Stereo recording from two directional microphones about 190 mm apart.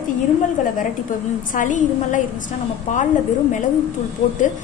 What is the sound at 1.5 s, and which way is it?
Speech, 40° left (ahead or behind).